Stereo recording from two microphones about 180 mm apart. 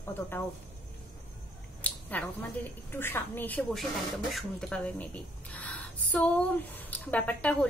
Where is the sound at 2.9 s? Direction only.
10° left (ahead or behind).